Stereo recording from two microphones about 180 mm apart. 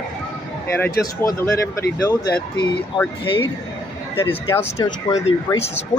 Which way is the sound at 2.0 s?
25° left (ahead or behind).